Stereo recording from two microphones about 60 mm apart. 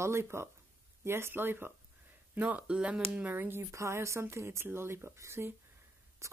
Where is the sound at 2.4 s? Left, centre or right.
Right.